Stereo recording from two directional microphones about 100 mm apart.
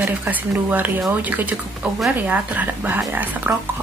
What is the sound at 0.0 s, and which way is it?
A woman's voice, 15° right (ahead or behind).